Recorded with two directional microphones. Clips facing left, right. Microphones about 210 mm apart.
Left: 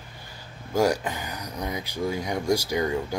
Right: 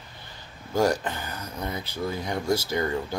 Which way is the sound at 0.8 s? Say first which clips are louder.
Left 1 dB; 10° left (ahead or behind).